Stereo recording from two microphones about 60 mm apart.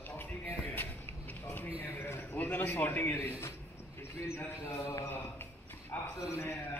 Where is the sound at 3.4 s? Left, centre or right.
Left.